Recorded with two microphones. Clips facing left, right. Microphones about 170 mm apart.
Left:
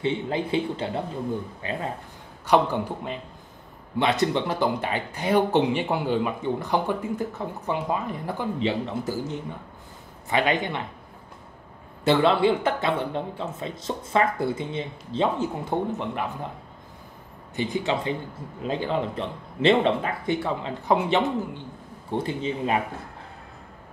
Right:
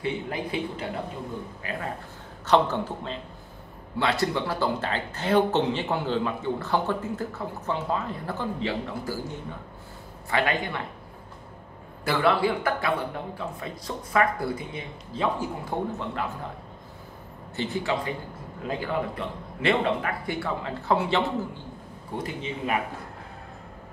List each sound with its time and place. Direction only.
0.0 s a man's voice: 25° left (ahead or behind)
2.4 s a man's voice: 10° left (ahead or behind)
12.0 s a man's voice: 25° left (ahead or behind)
17.6 s a man's voice: 15° left (ahead or behind)
22.1 s a man's voice: 30° left (ahead or behind)